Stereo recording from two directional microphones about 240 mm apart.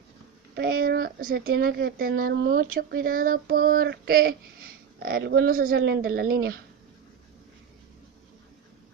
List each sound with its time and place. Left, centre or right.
0.6 s speech: right